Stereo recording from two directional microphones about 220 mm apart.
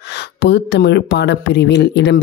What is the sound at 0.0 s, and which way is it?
Speech, 50° left (ahead or behind).